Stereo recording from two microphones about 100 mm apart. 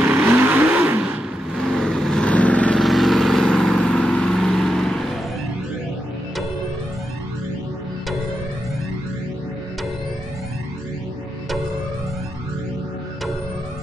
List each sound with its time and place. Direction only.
0.0 s vehicle: 15° right (ahead or behind)
1.5 s vehicle: 5° left (ahead or behind)
2.8 s vehicle: centre (ahead or behind)